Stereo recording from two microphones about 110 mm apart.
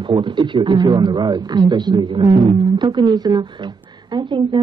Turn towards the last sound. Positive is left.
turn(degrees=-45)  # may be behind; listen again after turning